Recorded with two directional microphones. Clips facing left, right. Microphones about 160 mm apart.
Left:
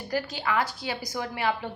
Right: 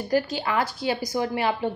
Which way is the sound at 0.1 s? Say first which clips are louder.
Right 4 dB; 35° right (ahead or behind).